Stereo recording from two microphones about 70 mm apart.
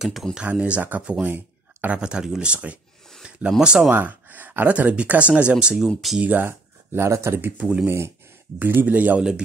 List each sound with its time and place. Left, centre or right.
0.0 s speech: centre
0.4 s speech: centre
1.2 s a sound: right
2.0 s speech: centre
3.9 s speech: right
6.2 s speech: right
7.0 s speech: right
7.8 s speech: right
8.5 s speech: right